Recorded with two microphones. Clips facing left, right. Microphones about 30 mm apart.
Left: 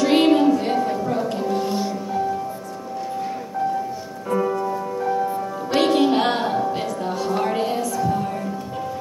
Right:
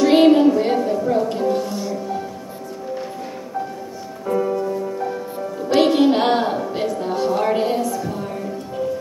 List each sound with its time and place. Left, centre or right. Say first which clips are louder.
0.0 s music: right 3 dB; centre
1.6 s music: left 1 dB; left
4.3 s music: right 1 dB; centre